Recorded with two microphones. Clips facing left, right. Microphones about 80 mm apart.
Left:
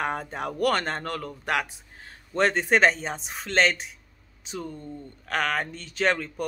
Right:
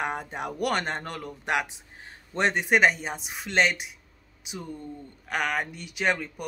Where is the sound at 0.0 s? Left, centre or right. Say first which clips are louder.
Left 2 dB; centre.